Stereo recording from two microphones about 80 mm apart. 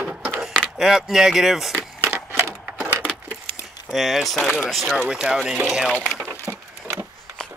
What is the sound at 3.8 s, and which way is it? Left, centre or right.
Speech, centre.